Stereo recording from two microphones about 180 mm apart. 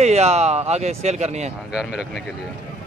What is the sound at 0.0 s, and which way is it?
Speech, 35° right (ahead or behind).